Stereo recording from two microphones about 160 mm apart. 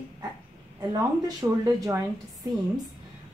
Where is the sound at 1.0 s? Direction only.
20° right (ahead or behind).